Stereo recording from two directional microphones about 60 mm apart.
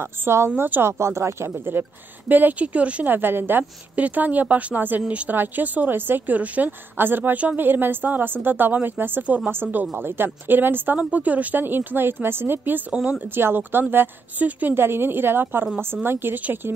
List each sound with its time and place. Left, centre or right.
0.0 s speech: right
0.6 s a woman's voice: right
0.8 s speech: right
1.7 s a woman's voice: right
3.1 s a woman's voice: right
11.0 s a woman's voice: right
12.9 s a woman's voice: centre
13.3 s a woman's voice: right
14.8 s a woman's voice: right